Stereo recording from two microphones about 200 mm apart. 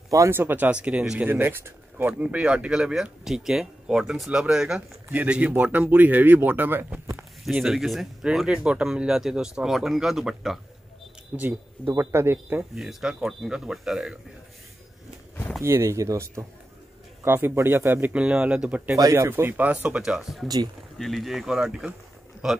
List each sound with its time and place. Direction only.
0.1 s speech: 15° right (ahead or behind)
15.6 s speech: 15° right (ahead or behind)
20.4 s speech: 20° right (ahead or behind)
21.0 s speech: centre (ahead or behind)